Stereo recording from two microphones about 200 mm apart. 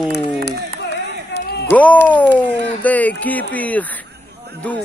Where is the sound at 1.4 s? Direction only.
55° left (ahead or behind).